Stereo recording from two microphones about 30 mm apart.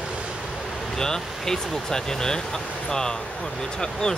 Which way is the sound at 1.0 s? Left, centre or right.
Centre.